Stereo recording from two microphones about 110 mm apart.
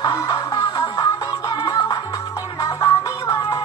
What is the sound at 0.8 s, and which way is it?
Music, 30° left (ahead or behind).